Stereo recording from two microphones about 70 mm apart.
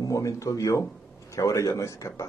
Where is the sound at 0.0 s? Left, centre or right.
Left.